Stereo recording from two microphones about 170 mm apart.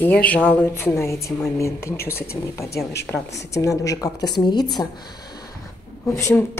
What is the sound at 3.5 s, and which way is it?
A woman's voice, 20° left (ahead or behind).